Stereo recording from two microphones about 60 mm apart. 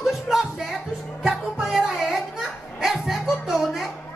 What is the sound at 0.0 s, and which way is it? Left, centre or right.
Music, centre.